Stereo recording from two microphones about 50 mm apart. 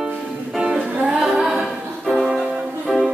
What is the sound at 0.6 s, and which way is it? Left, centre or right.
Music, right.